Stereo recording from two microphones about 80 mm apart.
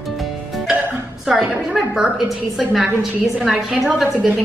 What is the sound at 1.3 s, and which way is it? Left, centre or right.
Speech, centre.